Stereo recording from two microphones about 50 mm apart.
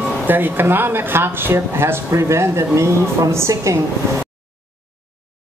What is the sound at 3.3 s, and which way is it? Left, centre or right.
Speech, right.